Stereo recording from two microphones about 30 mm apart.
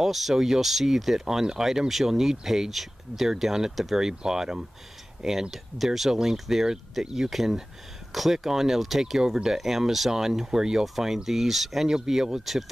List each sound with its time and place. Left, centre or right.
0.0 s speech: centre
4.0 s speech: centre
9.2 s speech: centre
9.6 s speech: centre
11.2 s speech: centre